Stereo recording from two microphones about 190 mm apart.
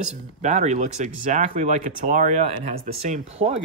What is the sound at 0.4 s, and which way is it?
Speech, 40° right (ahead or behind).